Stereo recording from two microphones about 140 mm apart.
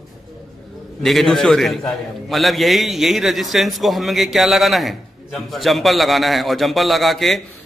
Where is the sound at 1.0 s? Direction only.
Centre (ahead or behind).